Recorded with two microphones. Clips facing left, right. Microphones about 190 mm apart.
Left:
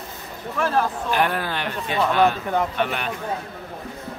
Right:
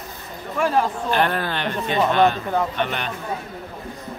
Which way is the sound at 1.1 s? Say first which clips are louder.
Right 1 dB; 10° left (ahead or behind).